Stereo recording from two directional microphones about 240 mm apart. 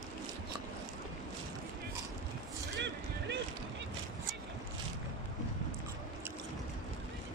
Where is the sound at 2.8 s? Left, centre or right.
Right.